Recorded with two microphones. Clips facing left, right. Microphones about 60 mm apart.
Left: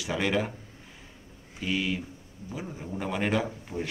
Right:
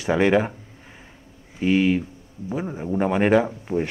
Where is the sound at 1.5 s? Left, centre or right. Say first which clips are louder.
Right 10 dB; right.